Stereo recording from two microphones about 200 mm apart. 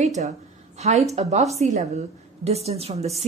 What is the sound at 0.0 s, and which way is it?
A woman's voice, 35° right (ahead or behind).